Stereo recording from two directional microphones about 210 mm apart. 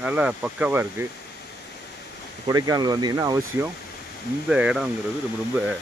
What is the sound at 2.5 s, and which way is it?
Speech, 20° right (ahead or behind).